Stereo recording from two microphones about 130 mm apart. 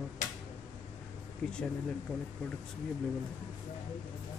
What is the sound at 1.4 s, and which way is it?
Speech, 5° left (ahead or behind).